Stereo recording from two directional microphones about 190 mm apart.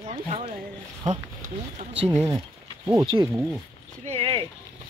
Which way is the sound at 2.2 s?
20° right (ahead or behind).